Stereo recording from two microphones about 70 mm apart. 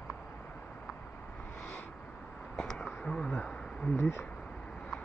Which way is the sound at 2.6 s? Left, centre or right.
Centre.